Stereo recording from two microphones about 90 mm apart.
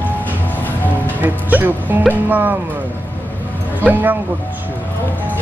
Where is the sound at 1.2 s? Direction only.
20° right (ahead or behind).